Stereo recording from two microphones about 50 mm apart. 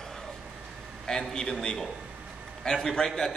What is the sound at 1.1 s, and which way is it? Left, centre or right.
Speech, centre.